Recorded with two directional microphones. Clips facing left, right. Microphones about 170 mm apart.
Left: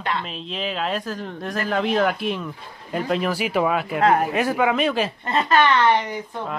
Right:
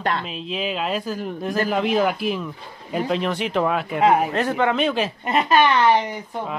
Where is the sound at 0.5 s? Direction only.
5° right (ahead or behind).